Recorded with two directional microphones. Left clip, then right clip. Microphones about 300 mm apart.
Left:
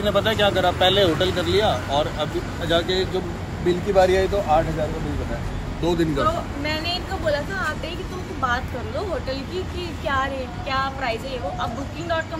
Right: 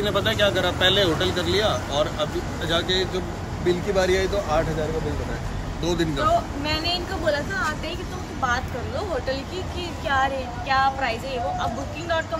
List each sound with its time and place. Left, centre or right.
0.0 s speech: centre
5.9 s speech: centre
6.6 s speech: centre